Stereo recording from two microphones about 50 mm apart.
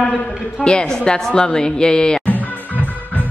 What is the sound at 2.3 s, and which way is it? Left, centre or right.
Music, left.